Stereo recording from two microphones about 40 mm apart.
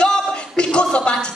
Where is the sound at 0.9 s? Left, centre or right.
Left.